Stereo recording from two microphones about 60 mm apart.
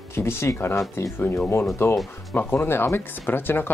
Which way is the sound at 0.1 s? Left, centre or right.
Left.